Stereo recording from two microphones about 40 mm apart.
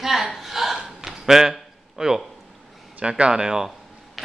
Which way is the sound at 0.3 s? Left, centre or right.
Centre.